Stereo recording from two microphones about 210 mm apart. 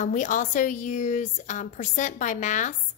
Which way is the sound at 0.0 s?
40° left (ahead or behind).